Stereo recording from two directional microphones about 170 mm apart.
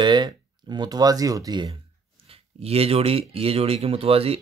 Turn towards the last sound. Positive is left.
turn(degrees=-35)  # may be behind; listen again after turning